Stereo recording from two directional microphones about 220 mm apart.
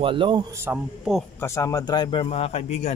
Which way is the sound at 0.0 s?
20° right (ahead or behind).